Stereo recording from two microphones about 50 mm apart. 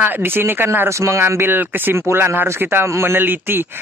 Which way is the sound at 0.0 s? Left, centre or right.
Right.